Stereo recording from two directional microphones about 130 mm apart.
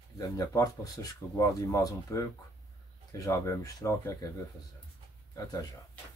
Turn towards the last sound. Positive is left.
turn(degrees=25)  # may be behind; listen again after turning